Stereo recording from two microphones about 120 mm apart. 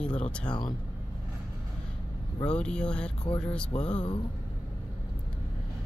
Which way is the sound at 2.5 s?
10° left (ahead or behind).